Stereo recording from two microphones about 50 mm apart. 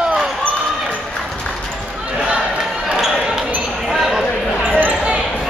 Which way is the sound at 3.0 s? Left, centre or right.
Centre.